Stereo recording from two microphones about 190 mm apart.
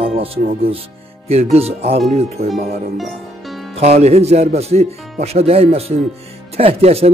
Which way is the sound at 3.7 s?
35° right (ahead or behind).